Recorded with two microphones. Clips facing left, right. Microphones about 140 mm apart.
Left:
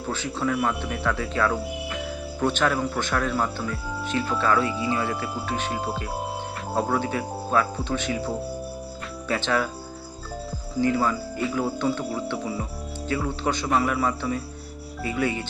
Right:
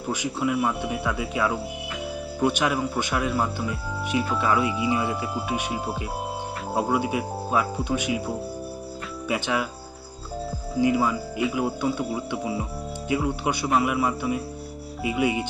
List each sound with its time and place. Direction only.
0.1 s speech: 10° right (ahead or behind)
9.3 s speech: 10° right (ahead or behind)
10.8 s speech: 10° right (ahead or behind)